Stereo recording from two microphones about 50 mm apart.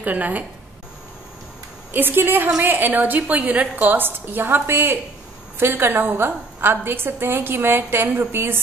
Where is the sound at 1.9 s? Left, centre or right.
Right.